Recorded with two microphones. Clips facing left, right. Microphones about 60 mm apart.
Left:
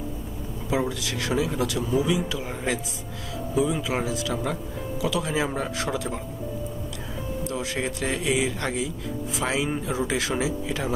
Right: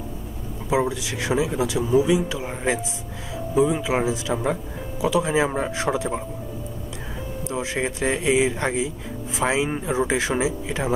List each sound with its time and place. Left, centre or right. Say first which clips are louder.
0.7 s speech: right 4 dB; centre
7.4 s speech: right 4 dB; right